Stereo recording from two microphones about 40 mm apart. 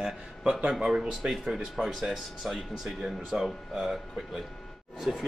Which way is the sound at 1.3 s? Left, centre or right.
Centre.